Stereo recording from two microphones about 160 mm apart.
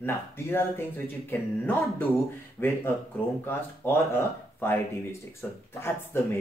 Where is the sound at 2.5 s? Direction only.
15° left (ahead or behind).